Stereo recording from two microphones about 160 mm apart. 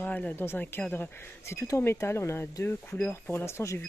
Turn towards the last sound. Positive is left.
turn(degrees=15)  # may be behind; listen again after turning